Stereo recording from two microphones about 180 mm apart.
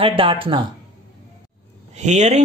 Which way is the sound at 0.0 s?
30° right (ahead or behind).